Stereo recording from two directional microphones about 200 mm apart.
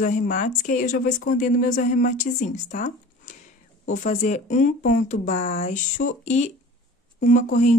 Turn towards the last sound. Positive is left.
turn(degrees=40)  # may be behind; listen again after turning